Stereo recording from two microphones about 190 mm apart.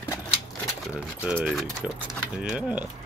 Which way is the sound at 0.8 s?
5° right (ahead or behind).